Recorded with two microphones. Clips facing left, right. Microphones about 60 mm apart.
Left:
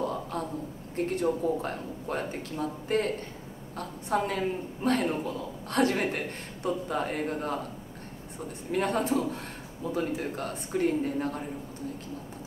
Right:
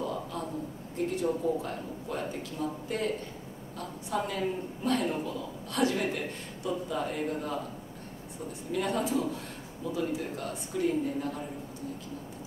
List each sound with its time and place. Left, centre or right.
0.0 s a sound: left
0.9 s a woman's voice: left
8.7 s a woman's voice: left